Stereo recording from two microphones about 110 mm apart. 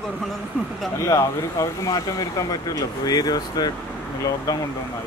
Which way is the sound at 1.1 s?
30° left (ahead or behind).